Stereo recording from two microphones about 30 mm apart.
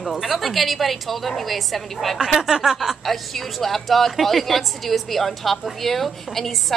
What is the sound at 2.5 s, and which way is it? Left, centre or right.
Speech, right.